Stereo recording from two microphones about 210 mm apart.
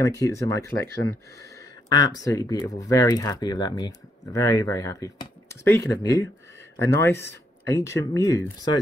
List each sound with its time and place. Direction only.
0.0 s speech: 15° left (ahead or behind)
1.9 s speech: 20° left (ahead or behind)